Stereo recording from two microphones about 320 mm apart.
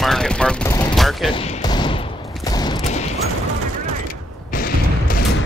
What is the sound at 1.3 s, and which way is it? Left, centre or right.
Fusillade, centre.